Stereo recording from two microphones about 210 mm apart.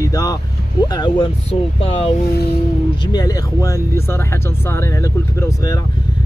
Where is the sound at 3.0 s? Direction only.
20° left (ahead or behind).